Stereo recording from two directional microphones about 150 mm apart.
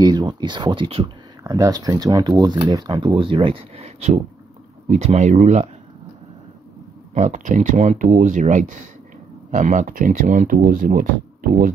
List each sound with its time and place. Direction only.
0.0 s speech: 25° right (ahead or behind)
1.4 s speech: 20° right (ahead or behind); by 5.7 s 50° right (ahead or behind)
7.2 s speech: 55° right (ahead or behind)